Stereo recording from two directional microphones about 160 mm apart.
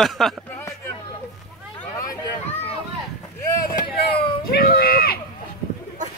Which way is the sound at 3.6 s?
65° left (ahead or behind).